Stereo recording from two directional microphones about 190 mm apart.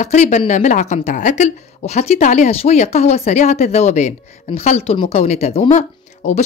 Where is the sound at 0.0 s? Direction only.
35° left (ahead or behind).